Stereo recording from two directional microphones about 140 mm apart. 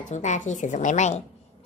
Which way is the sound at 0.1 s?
60° left (ahead or behind).